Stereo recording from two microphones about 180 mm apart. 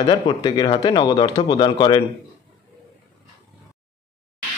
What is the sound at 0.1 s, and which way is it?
Speech, 25° left (ahead or behind).